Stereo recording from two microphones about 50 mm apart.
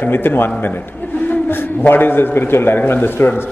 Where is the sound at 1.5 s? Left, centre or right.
Left.